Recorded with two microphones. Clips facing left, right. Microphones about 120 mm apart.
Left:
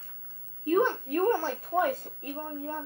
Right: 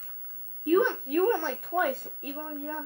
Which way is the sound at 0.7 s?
40° left (ahead or behind).